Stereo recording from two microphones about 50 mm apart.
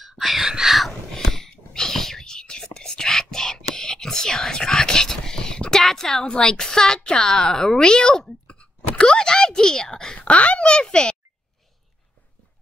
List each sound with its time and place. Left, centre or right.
0.2 s whispering: centre
1.1 s whispering: centre
6.2 s speech: centre
8.5 s a sound: left